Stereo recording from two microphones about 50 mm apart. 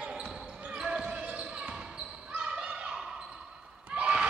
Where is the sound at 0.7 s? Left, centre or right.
Centre.